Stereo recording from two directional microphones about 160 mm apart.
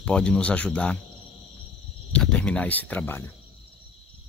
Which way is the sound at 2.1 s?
5° left (ahead or behind).